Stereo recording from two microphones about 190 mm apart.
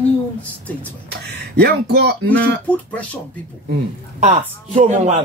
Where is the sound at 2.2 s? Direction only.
5° left (ahead or behind).